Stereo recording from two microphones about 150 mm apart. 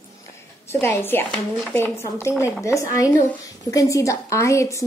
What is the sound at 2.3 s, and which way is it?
Speech, 5° right (ahead or behind).